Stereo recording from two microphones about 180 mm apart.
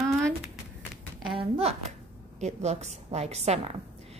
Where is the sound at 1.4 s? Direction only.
35° right (ahead or behind).